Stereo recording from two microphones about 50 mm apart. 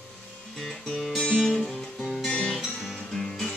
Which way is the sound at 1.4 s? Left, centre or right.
Centre.